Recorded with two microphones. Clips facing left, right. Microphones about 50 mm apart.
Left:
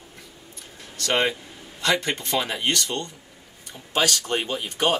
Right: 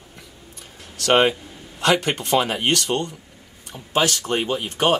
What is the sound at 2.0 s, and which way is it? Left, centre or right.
Speech, right.